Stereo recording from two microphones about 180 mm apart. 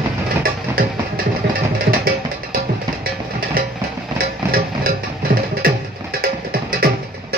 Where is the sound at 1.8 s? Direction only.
55° right (ahead or behind).